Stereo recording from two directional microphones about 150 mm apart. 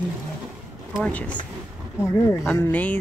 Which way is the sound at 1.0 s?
5° left (ahead or behind).